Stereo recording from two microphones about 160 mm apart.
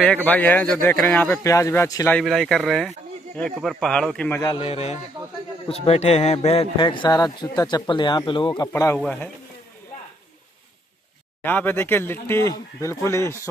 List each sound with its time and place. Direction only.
0.0 s speech: 10° left (ahead or behind)
2.2 s a man's voice: centre (ahead or behind)
4.6 s a man's voice: 40° left (ahead or behind); by 9.0 s 20° left (ahead or behind)
9.0 s speech: 10° left (ahead or behind)
11.4 s speech: 10° left (ahead or behind)